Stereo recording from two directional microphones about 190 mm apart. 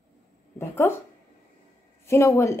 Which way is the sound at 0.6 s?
10° left (ahead or behind).